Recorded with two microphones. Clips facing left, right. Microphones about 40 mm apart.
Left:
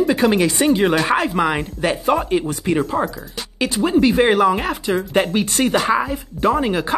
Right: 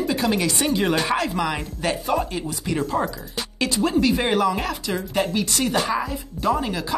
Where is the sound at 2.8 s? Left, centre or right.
Centre.